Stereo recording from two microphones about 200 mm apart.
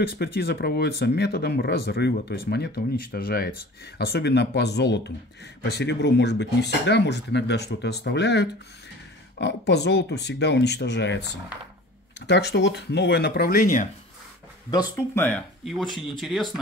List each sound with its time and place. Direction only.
0.0 s speech: 50° left (ahead or behind)
12.3 s speech: 55° left (ahead or behind)
14.7 s speech: 15° left (ahead or behind); by 16.4 s centre (ahead or behind)